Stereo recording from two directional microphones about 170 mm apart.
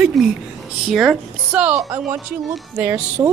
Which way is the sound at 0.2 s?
Centre (ahead or behind).